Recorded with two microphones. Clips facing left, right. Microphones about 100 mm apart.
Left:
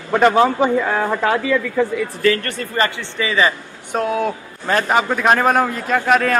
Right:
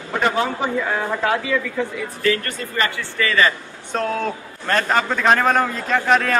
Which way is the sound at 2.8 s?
35° left (ahead or behind).